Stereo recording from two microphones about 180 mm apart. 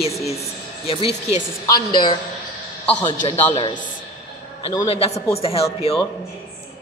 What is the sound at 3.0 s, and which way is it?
Speech, 35° left (ahead or behind).